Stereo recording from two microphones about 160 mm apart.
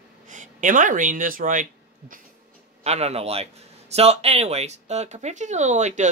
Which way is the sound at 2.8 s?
40° right (ahead or behind).